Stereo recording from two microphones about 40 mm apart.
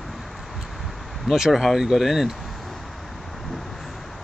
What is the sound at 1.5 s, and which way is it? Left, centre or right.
Speech, centre.